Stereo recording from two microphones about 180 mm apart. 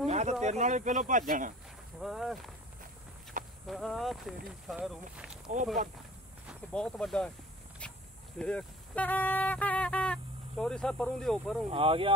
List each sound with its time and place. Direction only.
0.0 s speech: 40° right (ahead or behind)
2.0 s speech: centre (ahead or behind)
3.6 s speech: centre (ahead or behind)
6.7 s speech: 5° left (ahead or behind)
7.8 s a sound: 5° left (ahead or behind)
8.4 s speech: 5° left (ahead or behind)
11.7 s speech: 30° right (ahead or behind)